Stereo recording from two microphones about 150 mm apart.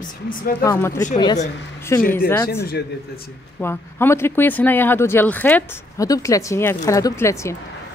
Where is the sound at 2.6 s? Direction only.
90° left.